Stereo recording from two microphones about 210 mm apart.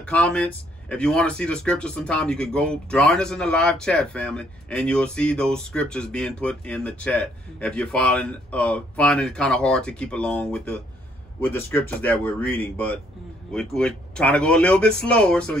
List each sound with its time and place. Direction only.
0.0 s speech: 5° left (ahead or behind)